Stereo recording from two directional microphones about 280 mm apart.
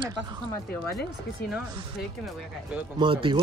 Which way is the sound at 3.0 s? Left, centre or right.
Centre.